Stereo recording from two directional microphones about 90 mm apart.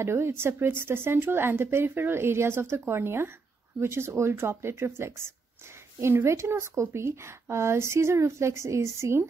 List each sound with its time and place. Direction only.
0.0 s a woman's voice: 30° right (ahead or behind)